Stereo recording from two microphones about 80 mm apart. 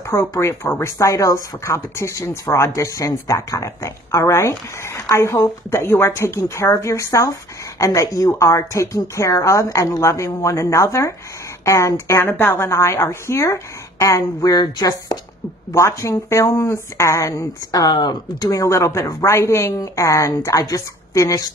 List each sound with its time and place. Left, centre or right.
0.0 s a woman's voice: left
15.7 s speech: left